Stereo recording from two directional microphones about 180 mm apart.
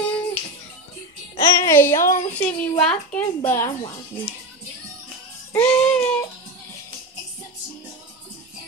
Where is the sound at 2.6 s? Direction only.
5° left (ahead or behind).